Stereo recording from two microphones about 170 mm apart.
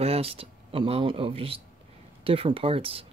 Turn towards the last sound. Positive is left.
turn(degrees=-35)  # may be behind; listen again after turning